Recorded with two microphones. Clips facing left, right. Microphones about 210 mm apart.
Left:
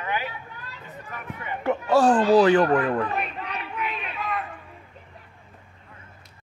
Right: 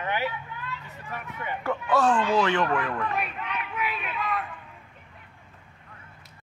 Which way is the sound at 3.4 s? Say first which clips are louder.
Even; 40° left (ahead or behind).